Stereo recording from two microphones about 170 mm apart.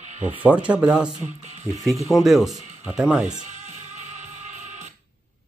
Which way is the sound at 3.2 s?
45° right (ahead or behind).